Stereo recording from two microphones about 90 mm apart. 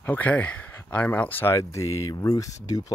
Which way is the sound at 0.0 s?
20° left (ahead or behind).